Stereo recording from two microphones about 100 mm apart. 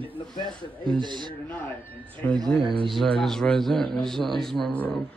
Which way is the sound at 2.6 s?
60° right (ahead or behind).